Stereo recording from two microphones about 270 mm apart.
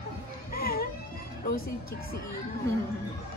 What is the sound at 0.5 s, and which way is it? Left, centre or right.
Baby cry, left.